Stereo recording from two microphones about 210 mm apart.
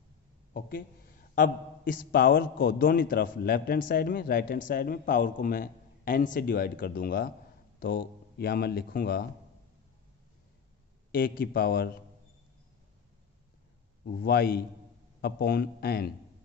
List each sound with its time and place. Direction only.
0.5 s a woman's voice: 45° left (ahead or behind)
11.1 s a man's voice: 45° left (ahead or behind)
14.0 s a man's voice: 50° left (ahead or behind)